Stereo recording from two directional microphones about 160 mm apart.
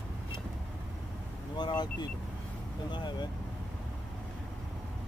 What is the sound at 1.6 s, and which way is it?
Speech, 25° left (ahead or behind).